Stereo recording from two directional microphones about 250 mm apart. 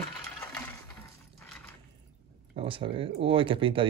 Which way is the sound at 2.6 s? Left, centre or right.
Right.